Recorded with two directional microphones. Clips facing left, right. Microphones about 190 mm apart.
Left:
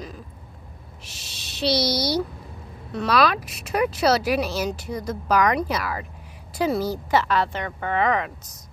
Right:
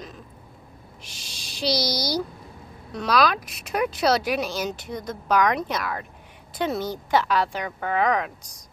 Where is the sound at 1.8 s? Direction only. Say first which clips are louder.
Left 3 dB; 30° left (ahead or behind).